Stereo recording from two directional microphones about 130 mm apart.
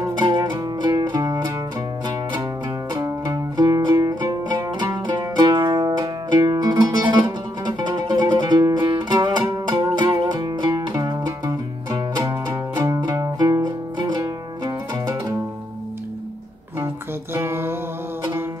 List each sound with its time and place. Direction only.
0.2 s music: 30° right (ahead or behind)
3.1 s music: 30° right (ahead or behind)
16.8 s guitar: 20° right (ahead or behind)